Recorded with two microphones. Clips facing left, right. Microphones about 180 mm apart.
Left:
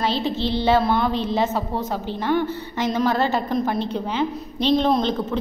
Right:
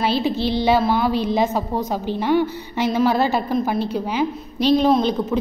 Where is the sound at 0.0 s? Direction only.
10° right (ahead or behind).